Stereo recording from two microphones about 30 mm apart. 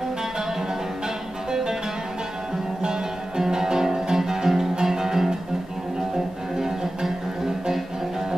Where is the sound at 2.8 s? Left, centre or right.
Right.